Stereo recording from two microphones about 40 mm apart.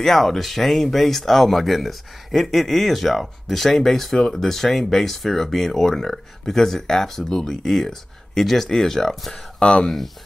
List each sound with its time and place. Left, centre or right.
0.0 s speech: centre
9.6 s speech: left
9.8 s speech: centre